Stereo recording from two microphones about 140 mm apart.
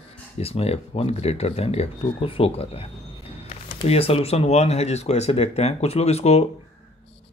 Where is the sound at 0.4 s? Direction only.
45° left (ahead or behind).